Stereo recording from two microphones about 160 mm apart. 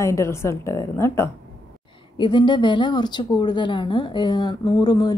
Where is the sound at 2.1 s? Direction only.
30° left (ahead or behind).